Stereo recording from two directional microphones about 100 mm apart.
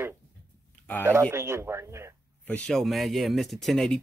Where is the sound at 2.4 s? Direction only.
10° left (ahead or behind).